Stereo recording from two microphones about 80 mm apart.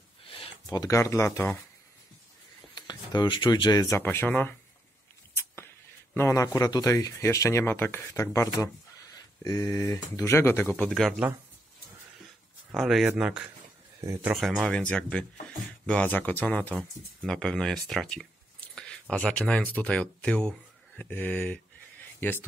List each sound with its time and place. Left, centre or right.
0.7 s speech: left
0.9 s speech: left
2.7 s speech: left
4.0 s speech: left
6.1 s speech: left
7.6 s speech: left
8.2 s speech: left
10.3 s speech: left
10.8 s speech: centre
12.7 s speech: centre
13.0 s speech: centre
14.3 s speech: centre
14.7 s speech: centre
21.0 s speech: left